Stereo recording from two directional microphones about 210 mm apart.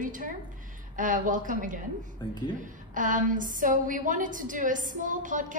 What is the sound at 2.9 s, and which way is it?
A woman's voice, 40° right (ahead or behind).